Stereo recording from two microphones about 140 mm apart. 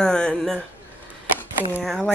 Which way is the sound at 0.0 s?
5° left (ahead or behind).